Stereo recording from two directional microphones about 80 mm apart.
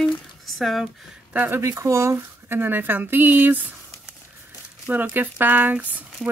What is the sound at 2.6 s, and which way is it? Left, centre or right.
Speech, right.